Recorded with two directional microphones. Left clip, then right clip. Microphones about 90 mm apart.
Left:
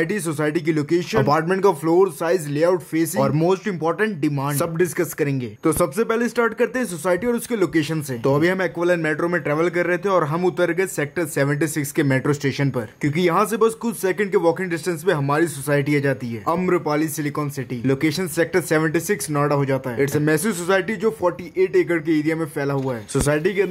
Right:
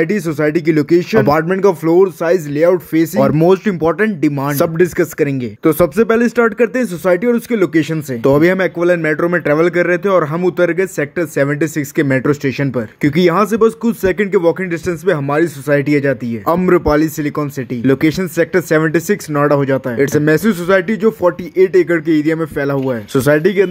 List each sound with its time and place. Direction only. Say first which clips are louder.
0.0 s speech: right 7 dB; 30° right (ahead or behind)
1.4 s speech: right 5 dB; 20° right (ahead or behind)
2.9 s speech: right 7 dB; 40° right (ahead or behind)
4.0 s speech: right 7 dB; 30° right (ahead or behind)
4.5 s speech: right 9 dB; 45° right (ahead or behind); by 8.0 s 25° right (ahead or behind)
8.2 s speech: right 8 dB; 50° right (ahead or behind); by 12.6 s 25° right (ahead or behind)
13.0 s speech: right 7 dB; 55° right (ahead or behind); by 16.2 s 35° right (ahead or behind)
16.6 s speech: right 10 dB; 60° right (ahead or behind); by 22.8 s 35° right (ahead or behind)
23.1 s speech: right 8 dB; 60° right (ahead or behind)